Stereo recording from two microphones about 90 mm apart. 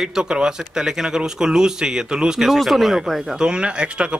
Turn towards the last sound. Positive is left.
turn(degrees=-10)  # may be behind; listen again after turning